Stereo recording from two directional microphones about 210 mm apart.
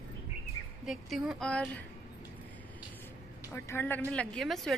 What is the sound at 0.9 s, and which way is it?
Speech, centre (ahead or behind).